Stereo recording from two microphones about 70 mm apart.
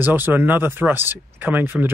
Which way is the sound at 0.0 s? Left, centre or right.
Right.